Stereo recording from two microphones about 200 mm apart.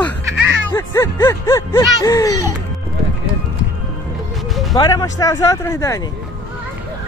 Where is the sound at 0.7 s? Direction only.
10° left (ahead or behind).